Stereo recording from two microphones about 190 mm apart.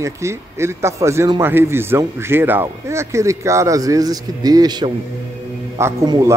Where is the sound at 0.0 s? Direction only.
15° right (ahead or behind).